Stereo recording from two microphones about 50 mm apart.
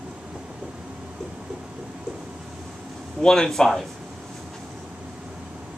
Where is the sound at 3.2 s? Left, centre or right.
Centre.